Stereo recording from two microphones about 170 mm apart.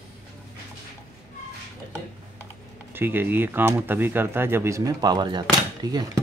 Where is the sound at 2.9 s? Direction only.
10° right (ahead or behind).